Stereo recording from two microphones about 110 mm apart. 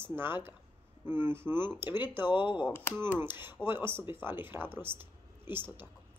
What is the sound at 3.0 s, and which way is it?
Speech, 20° right (ahead or behind).